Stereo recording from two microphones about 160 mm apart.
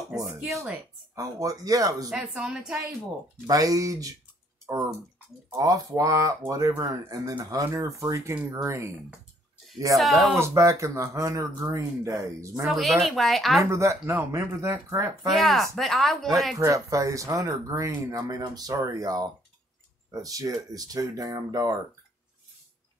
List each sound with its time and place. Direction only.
0.1 s a sound: 5° right (ahead or behind)
1.1 s speech: 20° right (ahead or behind)
2.0 s speech: 5° right (ahead or behind)
3.4 s speech: 20° right (ahead or behind)
5.6 s speech: 20° right (ahead or behind)
9.9 s speech: centre (ahead or behind)
10.3 s speech: 15° right (ahead or behind)
12.6 s speech: centre (ahead or behind)
13.7 s speech: 15° right (ahead or behind)
15.2 s speech: centre (ahead or behind)
16.5 s speech: 20° right (ahead or behind)